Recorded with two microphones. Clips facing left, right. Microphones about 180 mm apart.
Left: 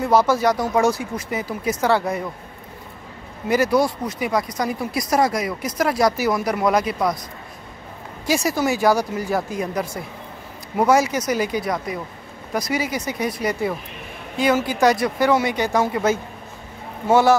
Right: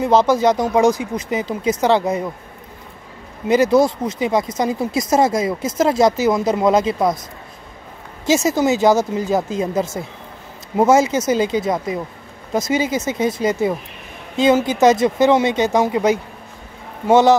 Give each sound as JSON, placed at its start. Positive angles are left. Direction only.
{"t": 0.0, "sound": "speech", "side_deg": -20}
{"t": 3.4, "sound": "speech", "side_deg": -20}
{"t": 8.3, "sound": "speech", "side_deg": -20}